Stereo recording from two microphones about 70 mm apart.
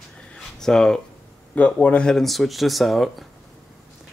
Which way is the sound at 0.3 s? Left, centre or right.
Centre.